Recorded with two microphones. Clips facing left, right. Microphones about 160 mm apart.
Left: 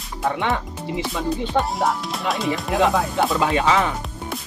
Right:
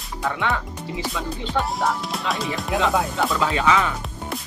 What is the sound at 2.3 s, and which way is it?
Speech, centre (ahead or behind).